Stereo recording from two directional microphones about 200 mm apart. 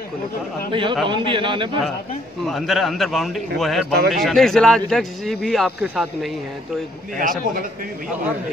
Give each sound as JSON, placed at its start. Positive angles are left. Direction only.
{"t": 0.7, "sound": "a man's voice", "side_deg": -25}
{"t": 2.4, "sound": "a man's voice", "side_deg": 0}
{"t": 7.2, "sound": "a man's voice", "side_deg": -45}